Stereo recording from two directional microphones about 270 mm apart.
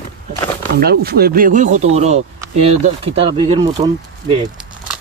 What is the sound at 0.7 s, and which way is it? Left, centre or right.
Chopping, right.